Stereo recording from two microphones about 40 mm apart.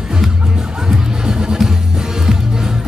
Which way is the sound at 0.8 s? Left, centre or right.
Centre.